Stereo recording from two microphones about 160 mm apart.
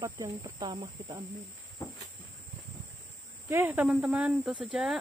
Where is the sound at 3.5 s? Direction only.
15° right (ahead or behind).